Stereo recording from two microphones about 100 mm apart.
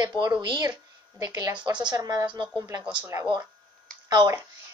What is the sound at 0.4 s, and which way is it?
A woman's voice, 45° right (ahead or behind).